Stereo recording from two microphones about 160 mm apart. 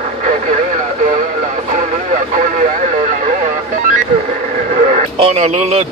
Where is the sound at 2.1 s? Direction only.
50° right (ahead or behind).